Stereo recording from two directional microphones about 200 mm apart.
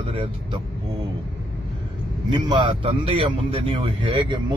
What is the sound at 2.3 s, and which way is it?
A man's voice, 25° right (ahead or behind).